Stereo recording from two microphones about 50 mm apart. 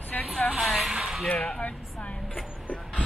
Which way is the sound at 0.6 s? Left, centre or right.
Centre.